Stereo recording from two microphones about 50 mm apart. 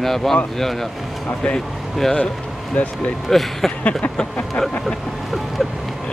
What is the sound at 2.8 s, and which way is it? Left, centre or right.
Speech, left.